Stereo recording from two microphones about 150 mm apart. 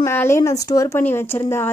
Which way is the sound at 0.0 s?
15° left (ahead or behind).